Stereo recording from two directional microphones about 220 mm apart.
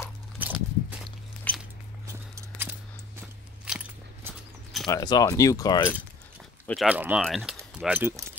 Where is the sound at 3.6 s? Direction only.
5° right (ahead or behind).